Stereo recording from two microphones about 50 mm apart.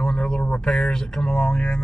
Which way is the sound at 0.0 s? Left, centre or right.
Centre.